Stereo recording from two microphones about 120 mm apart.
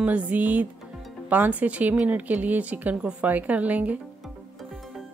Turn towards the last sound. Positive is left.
turn(degrees=-15)  # may be behind; listen again after turning